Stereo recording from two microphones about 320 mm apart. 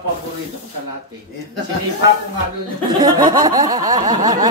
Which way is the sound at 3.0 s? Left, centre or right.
Centre.